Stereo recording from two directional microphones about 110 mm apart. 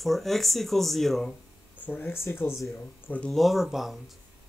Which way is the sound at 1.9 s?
20° left (ahead or behind).